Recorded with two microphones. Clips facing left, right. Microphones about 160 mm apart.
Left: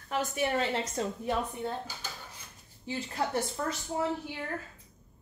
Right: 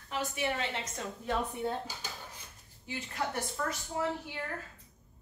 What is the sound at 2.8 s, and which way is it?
Speech, 30° left (ahead or behind).